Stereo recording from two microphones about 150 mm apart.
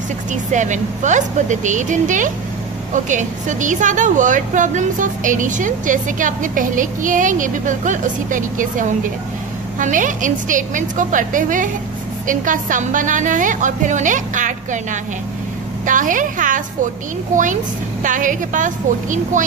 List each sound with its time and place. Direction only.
0.3 s a woman's voice: 55° right (ahead or behind)